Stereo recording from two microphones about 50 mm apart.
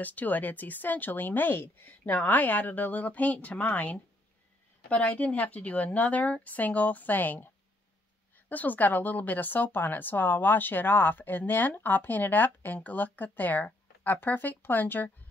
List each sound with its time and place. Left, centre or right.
0.0 s speech: left
8.5 s speech: left